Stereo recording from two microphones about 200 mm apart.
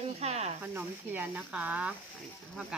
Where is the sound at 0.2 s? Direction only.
35° right (ahead or behind).